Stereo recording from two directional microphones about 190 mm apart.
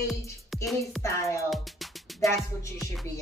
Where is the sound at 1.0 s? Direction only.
15° left (ahead or behind).